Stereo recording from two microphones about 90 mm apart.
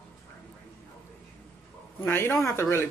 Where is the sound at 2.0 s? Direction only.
30° left (ahead or behind).